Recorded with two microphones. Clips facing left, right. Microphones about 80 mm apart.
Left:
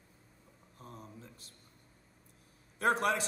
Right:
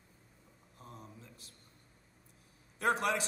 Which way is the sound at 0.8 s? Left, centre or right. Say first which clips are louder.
Left 2 dB; left.